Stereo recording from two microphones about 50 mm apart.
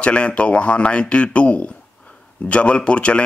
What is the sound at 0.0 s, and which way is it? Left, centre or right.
Speech, left.